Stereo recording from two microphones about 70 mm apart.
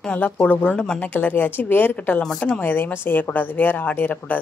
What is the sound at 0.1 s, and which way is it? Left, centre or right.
Speech, left.